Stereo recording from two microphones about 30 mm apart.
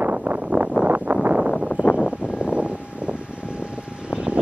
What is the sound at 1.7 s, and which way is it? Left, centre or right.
Vehicle, left.